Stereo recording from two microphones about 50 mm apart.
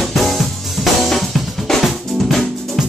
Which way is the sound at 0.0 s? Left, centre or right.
Centre.